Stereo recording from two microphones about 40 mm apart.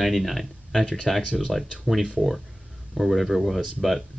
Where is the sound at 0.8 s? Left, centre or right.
Centre.